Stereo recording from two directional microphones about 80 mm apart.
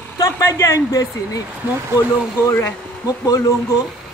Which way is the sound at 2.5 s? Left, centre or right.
Left.